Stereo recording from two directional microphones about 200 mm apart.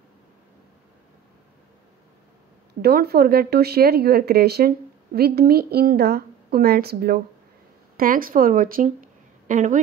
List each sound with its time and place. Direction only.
2.8 s speech: 50° right (ahead or behind)